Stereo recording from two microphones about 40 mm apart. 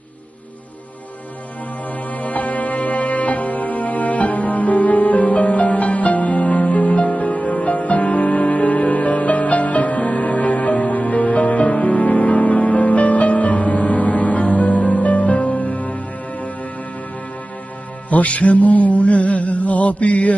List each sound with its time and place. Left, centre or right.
2.1 s music: left
18.1 s mantra: left